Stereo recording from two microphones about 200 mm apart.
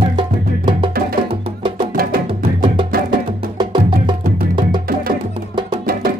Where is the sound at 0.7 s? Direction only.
25° right (ahead or behind).